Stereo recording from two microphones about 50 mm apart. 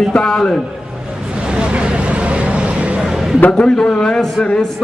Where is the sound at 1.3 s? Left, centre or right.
Right.